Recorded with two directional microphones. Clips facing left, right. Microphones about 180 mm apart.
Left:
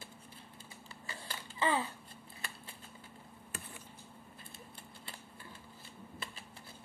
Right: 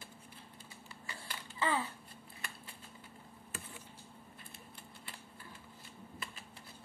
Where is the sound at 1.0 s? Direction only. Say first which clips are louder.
Left 2 dB; 30° left (ahead or behind).